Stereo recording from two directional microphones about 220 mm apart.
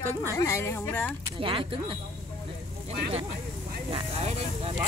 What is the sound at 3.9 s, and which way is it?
Vehicle, 25° right (ahead or behind).